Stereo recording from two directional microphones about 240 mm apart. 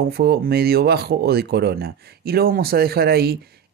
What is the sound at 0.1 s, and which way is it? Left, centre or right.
Speech, right.